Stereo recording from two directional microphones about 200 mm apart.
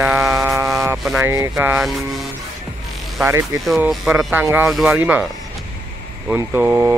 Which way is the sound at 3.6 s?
5° right (ahead or behind).